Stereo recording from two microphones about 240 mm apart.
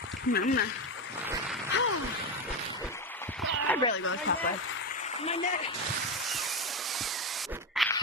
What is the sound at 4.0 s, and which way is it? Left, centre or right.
Speech, left.